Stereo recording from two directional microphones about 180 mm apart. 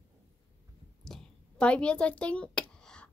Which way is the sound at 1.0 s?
5° left (ahead or behind).